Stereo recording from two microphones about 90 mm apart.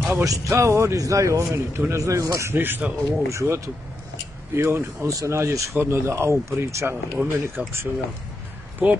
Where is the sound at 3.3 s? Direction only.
35° right (ahead or behind).